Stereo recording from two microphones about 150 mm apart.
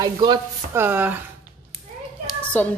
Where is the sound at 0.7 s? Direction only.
15° right (ahead or behind).